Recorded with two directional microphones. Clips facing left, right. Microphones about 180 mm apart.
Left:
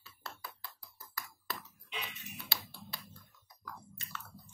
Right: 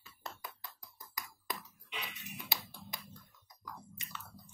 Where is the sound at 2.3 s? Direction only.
15° right (ahead or behind).